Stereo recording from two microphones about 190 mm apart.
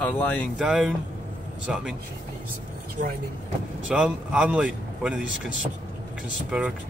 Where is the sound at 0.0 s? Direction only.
5° left (ahead or behind).